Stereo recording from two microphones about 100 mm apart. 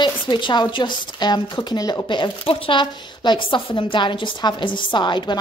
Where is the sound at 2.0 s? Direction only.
55° left (ahead or behind).